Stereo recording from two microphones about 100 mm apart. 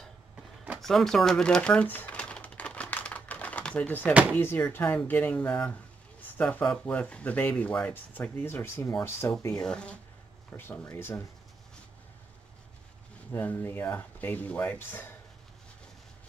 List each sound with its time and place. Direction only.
0.7 s typing: centre (ahead or behind)
4.1 s speech: 15° right (ahead or behind)
4.4 s speech: 20° left (ahead or behind)
9.6 s speech: 10° left (ahead or behind)
10.5 s speech: 25° left (ahead or behind)
13.3 s speech: 20° left (ahead or behind)